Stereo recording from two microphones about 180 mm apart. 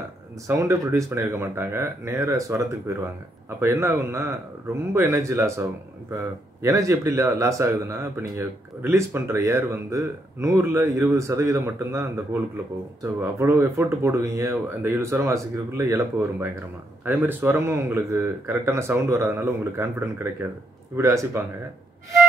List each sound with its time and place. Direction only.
0.5 s speech: 15° right (ahead or behind)